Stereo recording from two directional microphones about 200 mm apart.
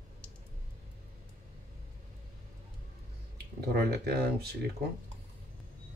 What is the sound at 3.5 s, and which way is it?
Speech, 55° right (ahead or behind).